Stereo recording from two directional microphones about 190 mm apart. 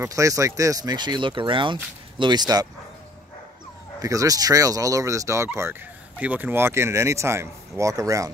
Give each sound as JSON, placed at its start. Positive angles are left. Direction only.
{"t": 0.0, "sound": "speech", "side_deg": -15}
{"t": 4.0, "sound": "speech", "side_deg": -15}